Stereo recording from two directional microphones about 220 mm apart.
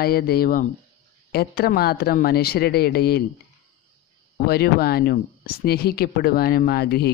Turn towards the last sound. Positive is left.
turn(degrees=45)  # may be behind; listen again after turning